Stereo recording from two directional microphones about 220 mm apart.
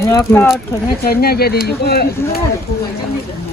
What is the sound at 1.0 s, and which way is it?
Speech, 45° left (ahead or behind).